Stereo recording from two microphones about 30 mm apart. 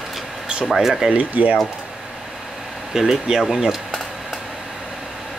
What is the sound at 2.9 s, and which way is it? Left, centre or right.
Speech, centre.